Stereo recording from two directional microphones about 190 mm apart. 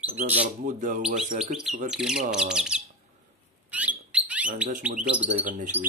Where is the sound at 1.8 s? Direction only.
5° right (ahead or behind).